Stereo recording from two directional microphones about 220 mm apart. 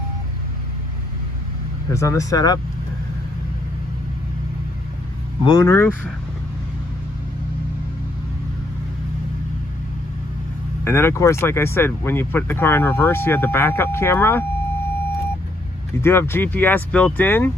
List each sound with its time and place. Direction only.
1.9 s speech: 15° left (ahead or behind)
5.4 s speech: 15° left (ahead or behind)
10.8 s speech: 10° left (ahead or behind)
16.0 s speech: 10° left (ahead or behind)